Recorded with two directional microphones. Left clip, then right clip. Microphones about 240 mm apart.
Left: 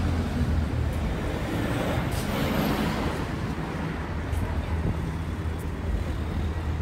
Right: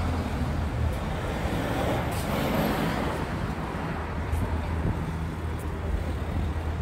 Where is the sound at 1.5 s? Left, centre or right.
Right.